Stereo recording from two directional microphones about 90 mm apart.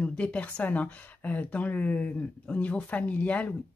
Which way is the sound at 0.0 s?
15° left (ahead or behind).